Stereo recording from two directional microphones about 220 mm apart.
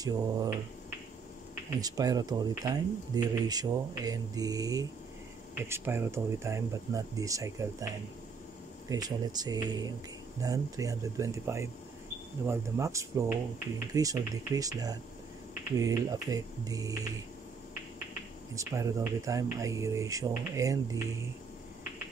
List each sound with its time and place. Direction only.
0.0 s speech: 15° right (ahead or behind)
1.8 s speech: 15° right (ahead or behind)
8.8 s speech: 15° right (ahead or behind)
18.5 s speech: 15° right (ahead or behind)